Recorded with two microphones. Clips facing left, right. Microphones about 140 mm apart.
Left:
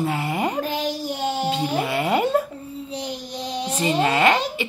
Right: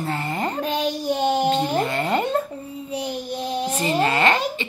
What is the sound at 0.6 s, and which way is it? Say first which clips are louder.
Speech: right 3 dB; 20° right (ahead or behind).